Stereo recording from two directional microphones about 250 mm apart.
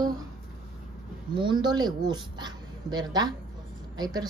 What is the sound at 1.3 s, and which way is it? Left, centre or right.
A woman's voice, centre.